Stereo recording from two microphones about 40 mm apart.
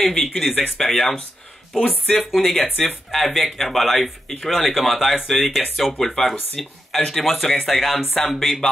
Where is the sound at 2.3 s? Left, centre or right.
Centre.